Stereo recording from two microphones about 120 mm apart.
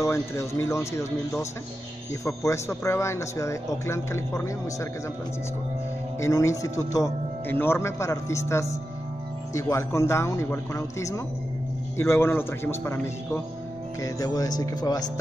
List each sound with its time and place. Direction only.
0.0 s a man's voice: 25° left (ahead or behind)
6.2 s a man's voice: 25° left (ahead or behind)